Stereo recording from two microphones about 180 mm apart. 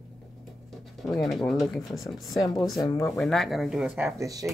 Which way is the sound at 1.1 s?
Centre (ahead or behind).